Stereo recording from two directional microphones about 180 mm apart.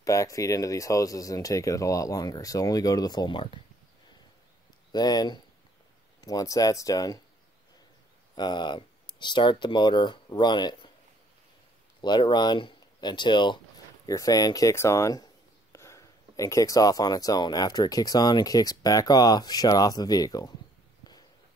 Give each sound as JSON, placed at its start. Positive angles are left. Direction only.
{"t": 0.0, "sound": "speech", "side_deg": 20}
{"t": 4.9, "sound": "speech", "side_deg": 20}
{"t": 8.4, "sound": "speech", "side_deg": 25}
{"t": 12.0, "sound": "speech", "side_deg": 25}